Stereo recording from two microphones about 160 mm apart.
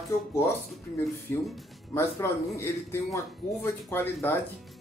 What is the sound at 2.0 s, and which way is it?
Speech, 15° left (ahead or behind).